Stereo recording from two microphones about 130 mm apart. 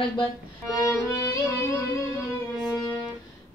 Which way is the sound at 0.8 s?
25° left (ahead or behind).